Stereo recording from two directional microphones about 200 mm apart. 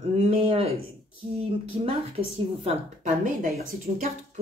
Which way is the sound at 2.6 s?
40° right (ahead or behind).